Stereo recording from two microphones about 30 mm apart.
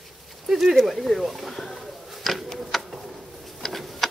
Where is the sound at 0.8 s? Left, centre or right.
Centre.